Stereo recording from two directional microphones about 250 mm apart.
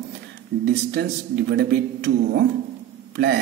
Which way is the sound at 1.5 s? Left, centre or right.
Right.